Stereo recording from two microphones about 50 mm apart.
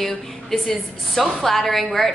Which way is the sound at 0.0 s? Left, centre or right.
Centre.